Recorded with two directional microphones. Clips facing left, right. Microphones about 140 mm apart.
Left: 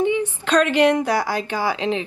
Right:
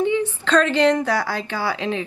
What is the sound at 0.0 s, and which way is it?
A woman's voice, 15° left (ahead or behind).